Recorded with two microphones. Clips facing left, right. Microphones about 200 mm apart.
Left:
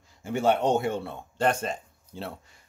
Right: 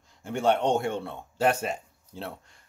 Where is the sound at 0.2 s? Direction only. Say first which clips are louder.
Left 1 dB; 5° left (ahead or behind).